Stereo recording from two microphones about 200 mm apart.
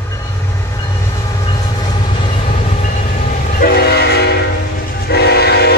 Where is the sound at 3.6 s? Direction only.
50° left (ahead or behind).